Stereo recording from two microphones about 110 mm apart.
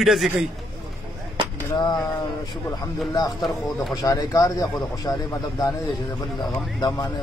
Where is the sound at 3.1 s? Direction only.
35° left (ahead or behind).